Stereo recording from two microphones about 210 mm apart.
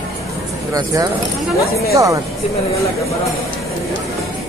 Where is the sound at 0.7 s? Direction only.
15° right (ahead or behind).